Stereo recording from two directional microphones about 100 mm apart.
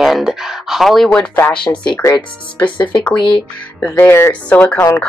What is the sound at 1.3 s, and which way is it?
Speech, 15° left (ahead or behind).